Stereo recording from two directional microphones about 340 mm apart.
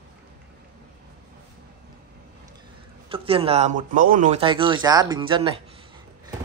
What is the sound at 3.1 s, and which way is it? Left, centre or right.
Speech, centre.